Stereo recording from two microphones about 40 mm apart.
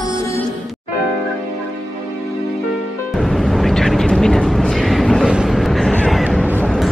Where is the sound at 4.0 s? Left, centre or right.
Centre.